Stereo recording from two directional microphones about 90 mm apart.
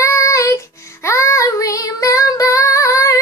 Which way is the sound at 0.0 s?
35° left (ahead or behind).